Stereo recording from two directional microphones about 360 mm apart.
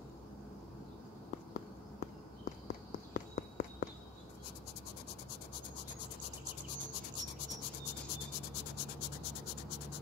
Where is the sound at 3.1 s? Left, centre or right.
Left.